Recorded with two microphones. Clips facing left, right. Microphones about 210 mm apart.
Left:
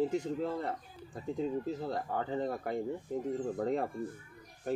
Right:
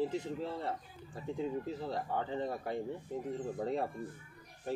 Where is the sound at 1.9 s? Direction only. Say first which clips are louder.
Even; 45° left (ahead or behind).